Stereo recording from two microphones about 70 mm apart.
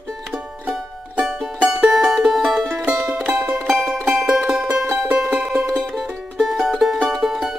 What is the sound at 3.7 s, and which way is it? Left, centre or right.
Music, centre.